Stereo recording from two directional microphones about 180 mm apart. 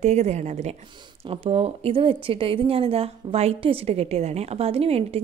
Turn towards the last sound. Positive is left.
turn(degrees=-35)  # may be behind; listen again after turning